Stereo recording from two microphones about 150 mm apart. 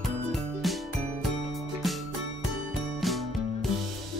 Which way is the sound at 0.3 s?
Centre (ahead or behind).